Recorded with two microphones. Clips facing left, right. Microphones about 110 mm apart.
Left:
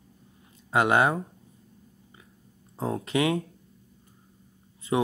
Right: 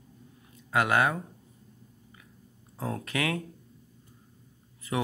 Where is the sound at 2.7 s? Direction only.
25° left (ahead or behind).